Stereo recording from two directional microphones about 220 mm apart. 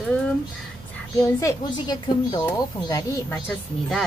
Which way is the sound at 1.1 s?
15° left (ahead or behind).